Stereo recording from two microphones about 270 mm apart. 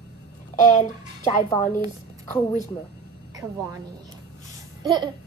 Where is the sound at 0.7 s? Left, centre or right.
Left.